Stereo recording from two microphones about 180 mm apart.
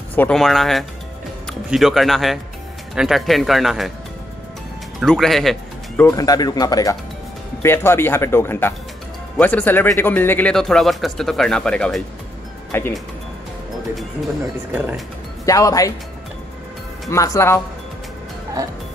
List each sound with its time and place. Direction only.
0.1 s speech: 5° left (ahead or behind)
5.0 s speech: centre (ahead or behind)
6.0 s speech: 20° left (ahead or behind)
15.4 s speech: 20° left (ahead or behind)
17.1 s speech: 15° left (ahead or behind)